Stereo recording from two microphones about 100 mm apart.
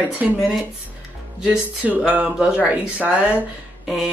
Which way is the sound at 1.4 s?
15° right (ahead or behind).